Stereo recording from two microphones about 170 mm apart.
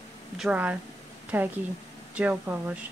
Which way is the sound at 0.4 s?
5° right (ahead or behind).